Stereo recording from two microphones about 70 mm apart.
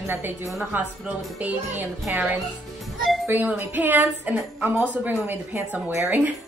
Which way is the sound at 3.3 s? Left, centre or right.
Right.